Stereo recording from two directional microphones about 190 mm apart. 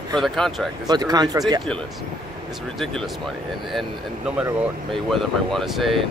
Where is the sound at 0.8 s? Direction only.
20° right (ahead or behind).